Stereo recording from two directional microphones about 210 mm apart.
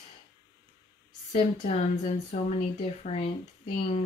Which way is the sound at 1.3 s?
30° left (ahead or behind).